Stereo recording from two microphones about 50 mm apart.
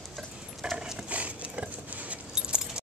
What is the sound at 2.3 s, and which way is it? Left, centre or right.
Keys jangling, centre.